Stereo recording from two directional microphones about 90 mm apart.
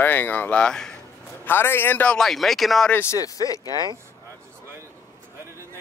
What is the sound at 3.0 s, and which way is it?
Speech, 40° left (ahead or behind).